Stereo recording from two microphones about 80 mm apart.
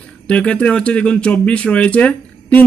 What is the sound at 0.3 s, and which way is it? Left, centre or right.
Speech, centre.